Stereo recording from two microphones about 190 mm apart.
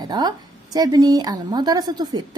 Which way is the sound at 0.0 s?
20° right (ahead or behind).